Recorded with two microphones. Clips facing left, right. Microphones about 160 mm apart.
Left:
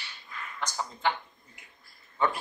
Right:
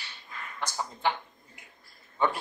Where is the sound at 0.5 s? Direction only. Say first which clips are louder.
Even; 10° right (ahead or behind).